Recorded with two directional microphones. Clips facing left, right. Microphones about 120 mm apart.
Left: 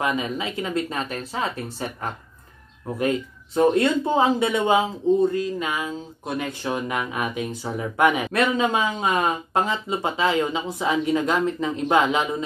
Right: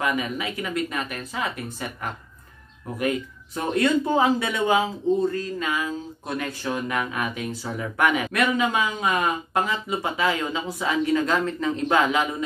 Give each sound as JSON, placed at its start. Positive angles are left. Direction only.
{"t": 0.0, "sound": "speech", "side_deg": 25}
{"t": 3.0, "sound": "speech", "side_deg": 25}